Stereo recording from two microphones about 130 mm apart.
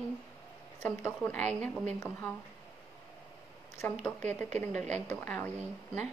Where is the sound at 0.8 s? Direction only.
10° left (ahead or behind).